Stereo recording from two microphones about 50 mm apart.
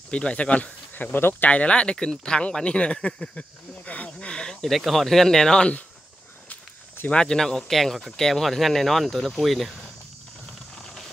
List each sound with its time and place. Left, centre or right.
0.1 s speech: left
0.9 s speech: left
1.5 s speech: left
4.6 s speech: centre
7.1 s speech: centre